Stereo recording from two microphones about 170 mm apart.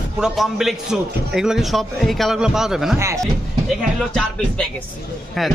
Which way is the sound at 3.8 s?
Centre (ahead or behind).